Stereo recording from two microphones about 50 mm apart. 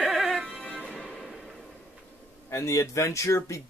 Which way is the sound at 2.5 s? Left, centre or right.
Left.